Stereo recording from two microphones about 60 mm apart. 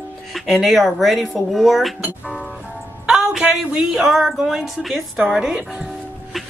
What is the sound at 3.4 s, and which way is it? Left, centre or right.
Speech, centre.